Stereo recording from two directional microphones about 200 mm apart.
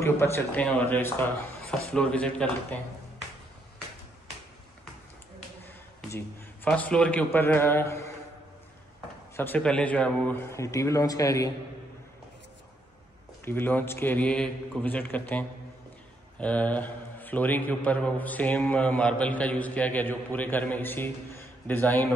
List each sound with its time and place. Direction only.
0.0 s a man's voice: 10° left (ahead or behind)
6.0 s a man's voice: 10° left (ahead or behind)
9.4 s a man's voice: 5° left (ahead or behind)
13.5 s a man's voice: 10° left (ahead or behind)